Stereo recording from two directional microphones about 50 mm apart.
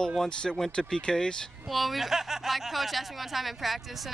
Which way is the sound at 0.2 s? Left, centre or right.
Centre.